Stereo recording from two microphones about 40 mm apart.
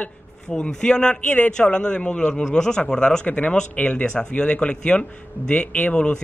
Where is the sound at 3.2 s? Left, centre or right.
Left.